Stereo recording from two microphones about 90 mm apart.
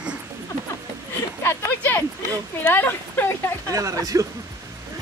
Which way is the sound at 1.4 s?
20° left (ahead or behind).